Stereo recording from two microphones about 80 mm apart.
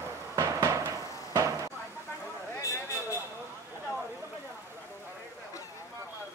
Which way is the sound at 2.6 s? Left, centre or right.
Left.